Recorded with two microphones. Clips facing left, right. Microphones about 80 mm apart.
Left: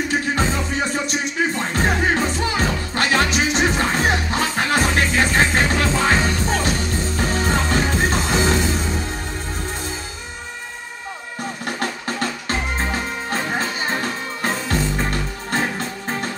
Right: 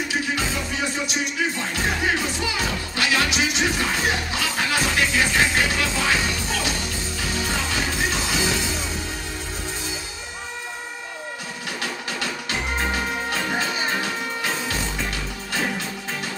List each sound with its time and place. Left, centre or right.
1.7 s music: left
11.6 s music: left